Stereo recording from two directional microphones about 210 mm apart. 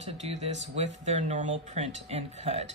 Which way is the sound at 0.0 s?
30° right (ahead or behind).